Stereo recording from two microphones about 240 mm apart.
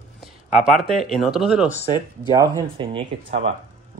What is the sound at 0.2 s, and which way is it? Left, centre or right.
Speech, centre.